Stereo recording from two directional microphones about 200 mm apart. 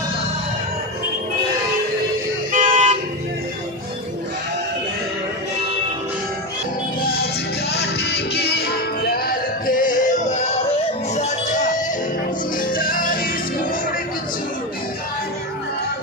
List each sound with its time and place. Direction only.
2.5 s toot: 40° right (ahead or behind)
7.0 s music: 50° left (ahead or behind)
12.7 s music: 45° left (ahead or behind)